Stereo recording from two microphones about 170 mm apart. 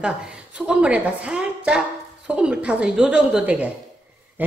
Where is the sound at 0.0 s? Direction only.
5° right (ahead or behind).